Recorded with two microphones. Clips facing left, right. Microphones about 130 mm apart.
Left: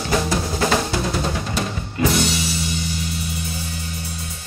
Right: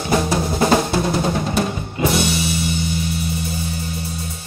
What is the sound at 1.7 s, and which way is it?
Music, 20° right (ahead or behind).